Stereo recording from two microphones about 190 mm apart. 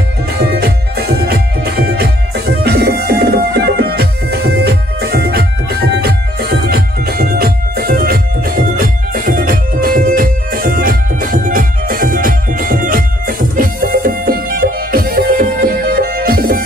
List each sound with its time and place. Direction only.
0.4 s music: 55° right (ahead or behind)